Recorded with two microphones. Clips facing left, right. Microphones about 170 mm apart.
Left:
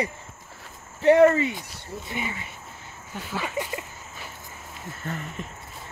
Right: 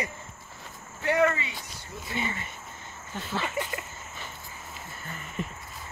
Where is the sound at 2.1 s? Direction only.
10° left (ahead or behind).